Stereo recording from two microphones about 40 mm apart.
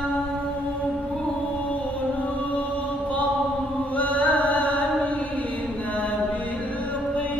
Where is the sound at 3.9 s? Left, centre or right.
Left.